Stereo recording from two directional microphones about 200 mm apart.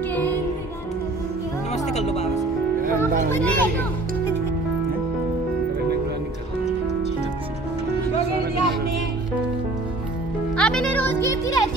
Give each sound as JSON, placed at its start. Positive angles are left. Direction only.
{"t": 0.1, "sound": "music", "side_deg": 10}
{"t": 1.9, "sound": "music", "side_deg": 35}
{"t": 3.3, "sound": "a child's voice", "side_deg": 10}
{"t": 10.5, "sound": "music", "side_deg": 5}